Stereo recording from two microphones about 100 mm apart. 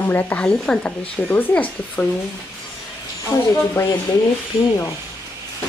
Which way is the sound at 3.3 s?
45° left (ahead or behind).